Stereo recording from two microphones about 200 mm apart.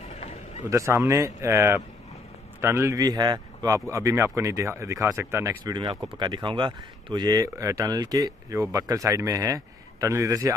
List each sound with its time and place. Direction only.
0.7 s speech: 15° right (ahead or behind)